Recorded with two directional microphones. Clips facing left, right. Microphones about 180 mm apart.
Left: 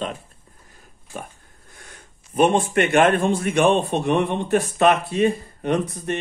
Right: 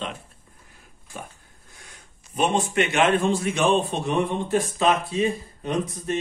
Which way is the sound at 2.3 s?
55° left (ahead or behind).